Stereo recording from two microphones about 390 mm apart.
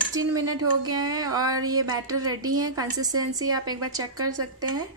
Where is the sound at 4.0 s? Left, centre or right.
Right.